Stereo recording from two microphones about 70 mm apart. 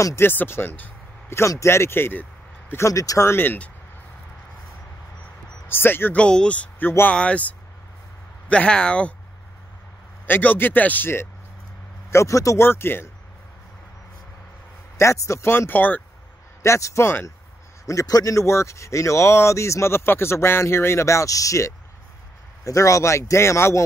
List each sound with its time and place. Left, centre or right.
0.2 s speech: left
1.6 s speech: left
2.9 s speech: left
3.3 s speech: left
5.7 s speech: left
6.1 s speech: centre
10.2 s speech: left
12.1 s speech: left
12.6 s speech: left
15.0 s speech: left
16.6 s speech: left
17.8 s speech: left